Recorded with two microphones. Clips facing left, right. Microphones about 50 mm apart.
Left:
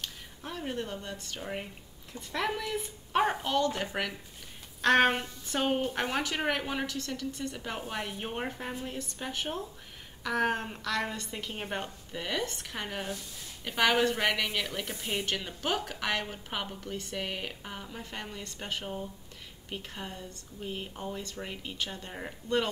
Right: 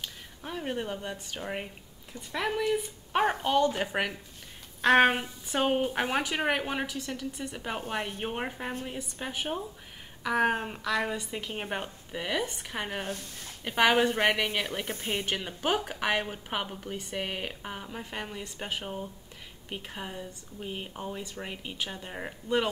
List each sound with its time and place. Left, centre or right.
0.0 s speech: centre
3.5 s speech: centre